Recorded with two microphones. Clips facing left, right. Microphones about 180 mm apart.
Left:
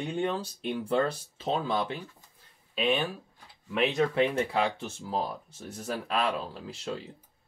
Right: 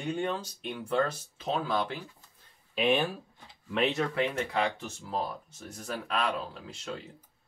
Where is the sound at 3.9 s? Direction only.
25° left (ahead or behind).